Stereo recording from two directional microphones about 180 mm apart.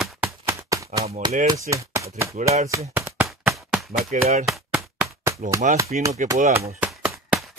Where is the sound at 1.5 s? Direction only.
15° right (ahead or behind).